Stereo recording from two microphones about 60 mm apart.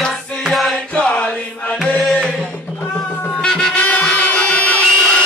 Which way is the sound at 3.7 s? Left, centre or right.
Left.